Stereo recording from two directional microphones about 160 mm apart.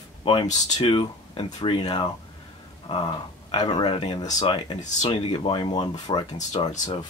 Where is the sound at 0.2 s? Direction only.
35° left (ahead or behind).